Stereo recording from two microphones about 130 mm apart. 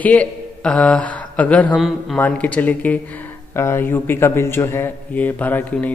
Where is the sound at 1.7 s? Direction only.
Centre (ahead or behind).